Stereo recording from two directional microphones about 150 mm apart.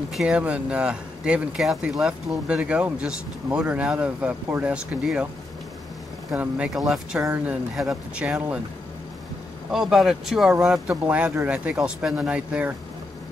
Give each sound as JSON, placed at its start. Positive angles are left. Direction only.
{"t": 0.1, "sound": "speech", "side_deg": -5}
{"t": 6.3, "sound": "speech", "side_deg": -10}
{"t": 7.2, "sound": "speech", "side_deg": -20}
{"t": 7.4, "sound": "speech", "side_deg": 0}
{"t": 9.7, "sound": "speech", "side_deg": -5}